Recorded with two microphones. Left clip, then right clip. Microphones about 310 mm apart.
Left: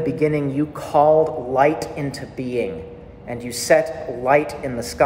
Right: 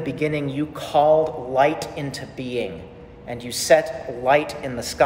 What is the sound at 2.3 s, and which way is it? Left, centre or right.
Speech, right.